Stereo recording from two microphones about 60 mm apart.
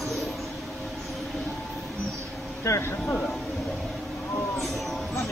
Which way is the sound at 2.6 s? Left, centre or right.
Left.